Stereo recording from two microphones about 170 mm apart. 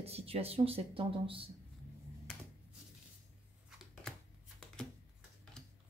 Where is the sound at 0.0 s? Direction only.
35° right (ahead or behind).